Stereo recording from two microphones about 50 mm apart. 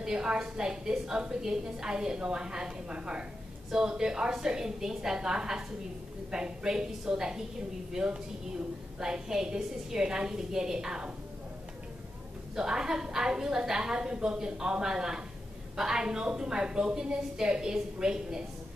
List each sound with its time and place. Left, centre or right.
0.0 s a woman's voice: centre
12.5 s a woman's voice: centre